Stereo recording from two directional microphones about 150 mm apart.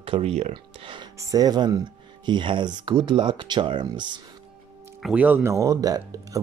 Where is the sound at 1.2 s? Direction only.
25° right (ahead or behind).